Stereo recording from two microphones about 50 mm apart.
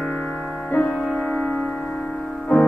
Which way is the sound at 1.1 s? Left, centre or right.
Left.